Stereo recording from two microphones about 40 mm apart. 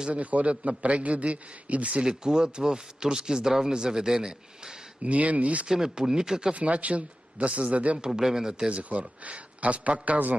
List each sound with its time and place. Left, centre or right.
0.1 s a man's voice: right
2.0 s speech: centre
5.0 s a man's voice: right
5.7 s speech: centre
6.5 s a man's voice: right
8.0 s speech: centre
8.6 s a man's voice: right